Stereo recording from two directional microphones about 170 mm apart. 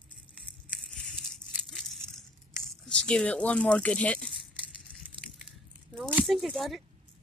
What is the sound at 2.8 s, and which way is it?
Speech, 5° left (ahead or behind).